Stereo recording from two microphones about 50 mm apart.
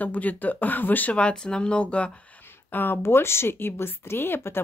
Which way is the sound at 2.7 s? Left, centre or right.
Left.